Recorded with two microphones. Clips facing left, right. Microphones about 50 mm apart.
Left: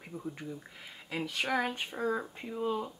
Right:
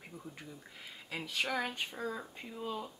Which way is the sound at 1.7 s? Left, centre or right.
Left.